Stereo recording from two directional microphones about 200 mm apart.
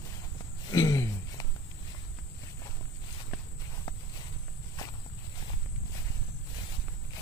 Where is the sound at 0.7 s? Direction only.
15° left (ahead or behind).